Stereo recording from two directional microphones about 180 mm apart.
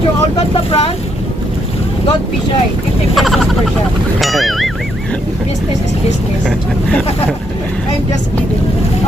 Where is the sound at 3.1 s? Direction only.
Centre (ahead or behind).